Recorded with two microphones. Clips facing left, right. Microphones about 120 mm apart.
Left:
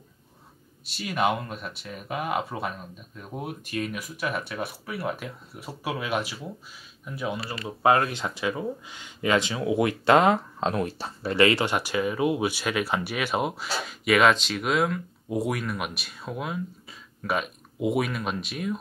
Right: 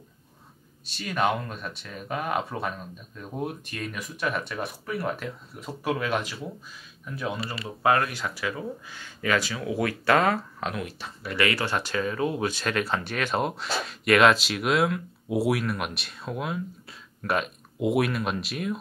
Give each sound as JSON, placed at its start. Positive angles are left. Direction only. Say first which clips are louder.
{"t": 0.9, "sound": "speech", "louder": "even", "side_deg": 5}
{"t": 10.7, "sound": "speech", "louder": "left 8 dB", "side_deg": 35}